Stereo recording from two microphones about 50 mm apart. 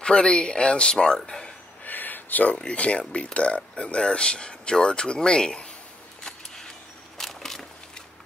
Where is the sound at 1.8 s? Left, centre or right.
Left.